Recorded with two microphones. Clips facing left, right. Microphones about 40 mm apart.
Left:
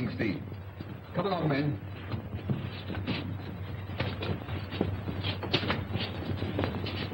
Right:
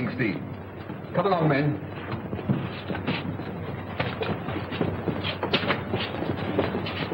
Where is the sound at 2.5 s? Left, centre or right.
Right.